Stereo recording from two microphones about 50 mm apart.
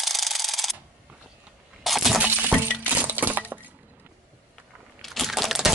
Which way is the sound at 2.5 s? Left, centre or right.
Centre.